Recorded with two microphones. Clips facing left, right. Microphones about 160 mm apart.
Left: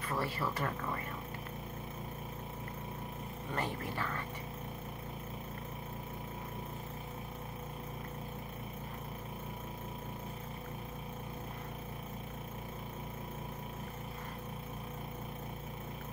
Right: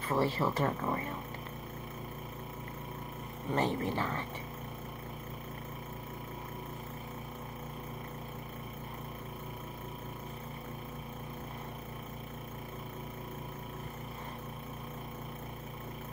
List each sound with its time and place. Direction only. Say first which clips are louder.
0.1 s speech: right 6 dB; 25° right (ahead or behind)
3.5 s speech: right 7 dB; 25° right (ahead or behind)